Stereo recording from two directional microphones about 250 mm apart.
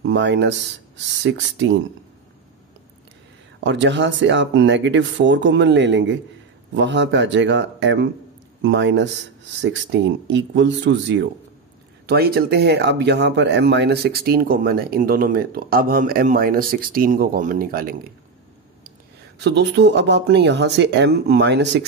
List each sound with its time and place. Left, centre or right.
0.0 s speech: right
3.6 s speech: right